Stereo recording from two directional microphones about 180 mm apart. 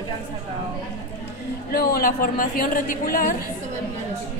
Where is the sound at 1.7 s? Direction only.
55° left (ahead or behind).